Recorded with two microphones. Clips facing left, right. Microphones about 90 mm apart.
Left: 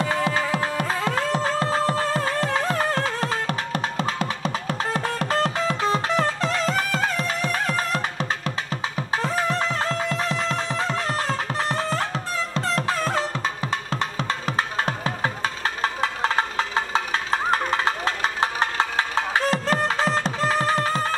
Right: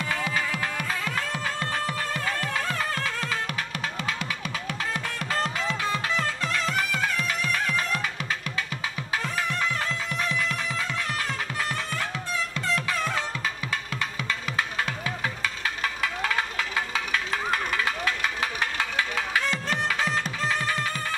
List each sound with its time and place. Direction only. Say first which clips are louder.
0.0 s music: left 5 dB; 35° left (ahead or behind)